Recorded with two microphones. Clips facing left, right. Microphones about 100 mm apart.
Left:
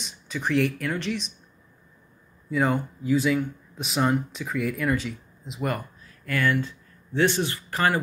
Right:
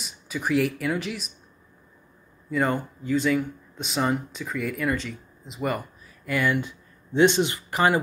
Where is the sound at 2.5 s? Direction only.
Centre (ahead or behind).